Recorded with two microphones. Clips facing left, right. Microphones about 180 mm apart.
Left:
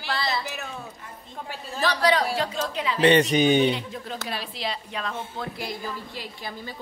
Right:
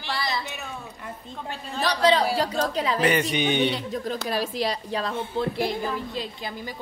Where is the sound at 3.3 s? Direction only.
40° left (ahead or behind).